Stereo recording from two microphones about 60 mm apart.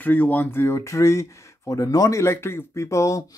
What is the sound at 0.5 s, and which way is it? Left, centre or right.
Speech, left.